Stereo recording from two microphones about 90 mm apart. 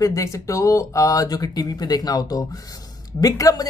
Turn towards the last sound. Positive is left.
turn(degrees=45)  # may be behind; listen again after turning